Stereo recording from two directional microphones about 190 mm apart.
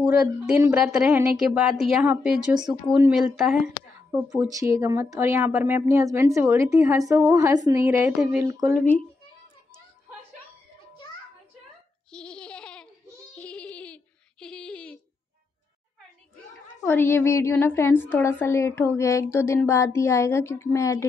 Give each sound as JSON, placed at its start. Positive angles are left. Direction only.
{"t": 0.1, "sound": "a woman's voice", "side_deg": -5}
{"t": 2.5, "sound": "speech", "side_deg": -20}
{"t": 2.9, "sound": "a woman's voice", "side_deg": -5}
{"t": 8.5, "sound": "speech", "side_deg": -15}
{"t": 12.1, "sound": "a sound", "side_deg": 5}
{"t": 13.3, "sound": "female singing", "side_deg": 5}
{"t": 16.8, "sound": "a woman's voice", "side_deg": 10}